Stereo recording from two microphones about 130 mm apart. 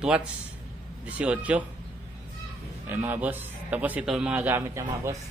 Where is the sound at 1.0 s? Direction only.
10° right (ahead or behind).